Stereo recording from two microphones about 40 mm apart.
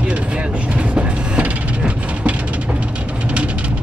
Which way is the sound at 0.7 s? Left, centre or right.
Right.